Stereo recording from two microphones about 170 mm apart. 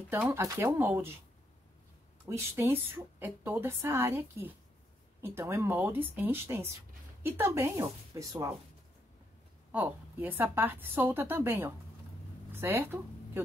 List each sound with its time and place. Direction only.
0.1 s speech: 15° right (ahead or behind)
2.2 s speech: 15° right (ahead or behind)
9.7 s speech: 10° right (ahead or behind)